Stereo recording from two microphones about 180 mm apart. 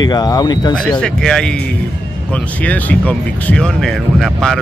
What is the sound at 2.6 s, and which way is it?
Speech, 10° left (ahead or behind).